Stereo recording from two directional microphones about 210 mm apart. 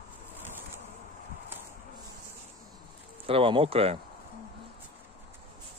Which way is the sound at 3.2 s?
25° right (ahead or behind).